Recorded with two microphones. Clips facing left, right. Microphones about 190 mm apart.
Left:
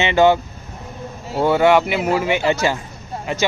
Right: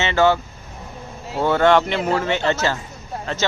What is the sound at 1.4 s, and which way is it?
Speech, 10° left (ahead or behind).